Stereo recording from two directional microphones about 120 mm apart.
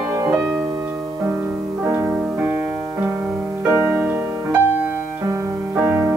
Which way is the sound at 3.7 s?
10° right (ahead or behind).